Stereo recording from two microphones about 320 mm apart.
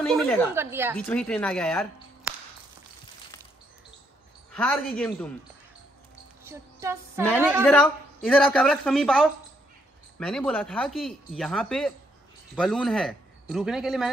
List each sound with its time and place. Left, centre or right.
0.0 s a woman's voice: centre
0.9 s speech: centre
4.5 s speech: centre
6.4 s a sound: centre
7.6 s speech: centre